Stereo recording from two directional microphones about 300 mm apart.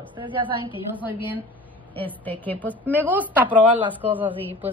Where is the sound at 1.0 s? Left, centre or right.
Centre.